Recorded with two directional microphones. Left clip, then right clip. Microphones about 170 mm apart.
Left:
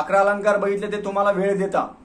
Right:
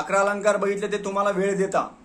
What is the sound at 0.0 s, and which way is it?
A man's voice, 15° right (ahead or behind).